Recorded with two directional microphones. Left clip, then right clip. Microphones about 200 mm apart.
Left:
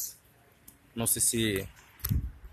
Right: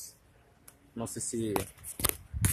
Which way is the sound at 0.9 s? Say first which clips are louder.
Left 5 dB; 20° left (ahead or behind).